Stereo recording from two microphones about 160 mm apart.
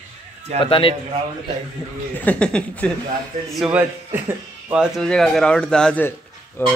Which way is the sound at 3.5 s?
5° right (ahead or behind).